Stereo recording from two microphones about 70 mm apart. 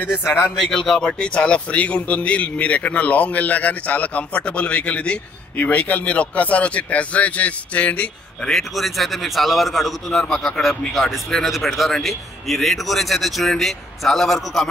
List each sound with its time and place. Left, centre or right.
0.0 s a man's voice: left
0.4 s a man's voice: centre
8.5 s a man's voice: centre